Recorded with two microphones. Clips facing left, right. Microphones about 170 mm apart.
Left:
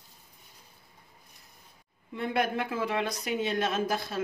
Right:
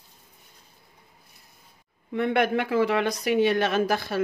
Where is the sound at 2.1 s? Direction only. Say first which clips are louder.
Right 6 dB; 75° right (ahead or behind).